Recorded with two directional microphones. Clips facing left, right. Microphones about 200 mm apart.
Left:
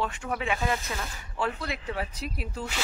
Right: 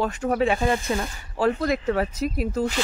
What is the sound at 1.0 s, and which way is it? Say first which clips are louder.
Speech: right 8 dB; 45° right (ahead or behind).